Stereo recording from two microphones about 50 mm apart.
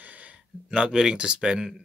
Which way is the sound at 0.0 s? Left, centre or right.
Right.